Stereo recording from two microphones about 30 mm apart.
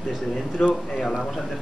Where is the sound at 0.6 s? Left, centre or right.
Left.